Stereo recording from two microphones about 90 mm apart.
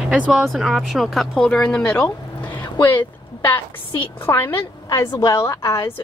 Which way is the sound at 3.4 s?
25° left (ahead or behind).